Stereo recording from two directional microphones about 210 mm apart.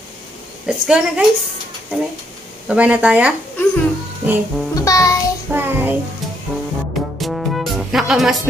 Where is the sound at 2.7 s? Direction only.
5° right (ahead or behind).